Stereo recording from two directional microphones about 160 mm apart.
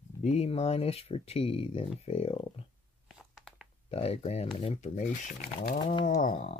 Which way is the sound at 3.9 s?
40° left (ahead or behind).